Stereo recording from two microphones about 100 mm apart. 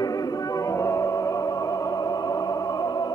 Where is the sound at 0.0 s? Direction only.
40° left (ahead or behind).